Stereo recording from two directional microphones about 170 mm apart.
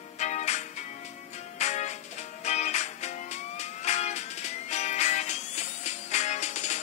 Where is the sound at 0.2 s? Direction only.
45° left (ahead or behind).